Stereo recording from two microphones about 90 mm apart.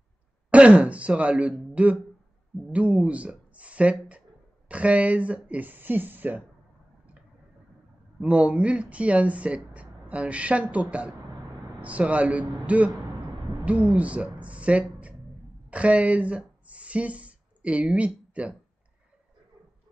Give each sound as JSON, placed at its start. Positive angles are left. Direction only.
{"t": 0.5, "sound": "speech", "side_deg": -15}
{"t": 8.2, "sound": "a woman's voice", "side_deg": -15}